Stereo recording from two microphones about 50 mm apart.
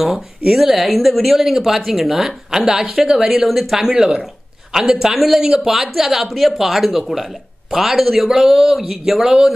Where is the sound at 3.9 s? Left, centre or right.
Centre.